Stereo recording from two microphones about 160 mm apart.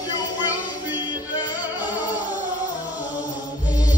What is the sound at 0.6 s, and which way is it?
Music, 25° left (ahead or behind).